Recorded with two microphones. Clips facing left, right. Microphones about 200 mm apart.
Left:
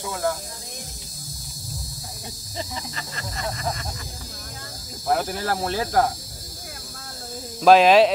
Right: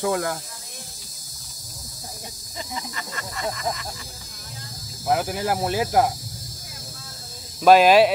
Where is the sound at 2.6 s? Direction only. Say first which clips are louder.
Even; 30° left (ahead or behind).